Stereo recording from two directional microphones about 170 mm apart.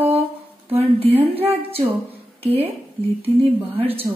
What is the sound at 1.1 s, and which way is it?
Speech, 10° right (ahead or behind).